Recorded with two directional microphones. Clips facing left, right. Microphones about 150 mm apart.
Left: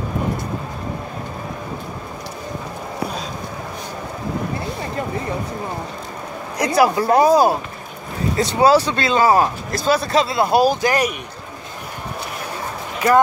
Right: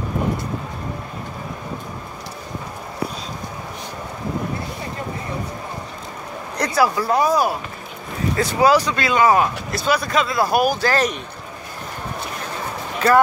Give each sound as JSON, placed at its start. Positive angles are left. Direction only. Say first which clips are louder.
{"t": 6.6, "sound": "speech", "louder": "left 3 dB", "side_deg": 20}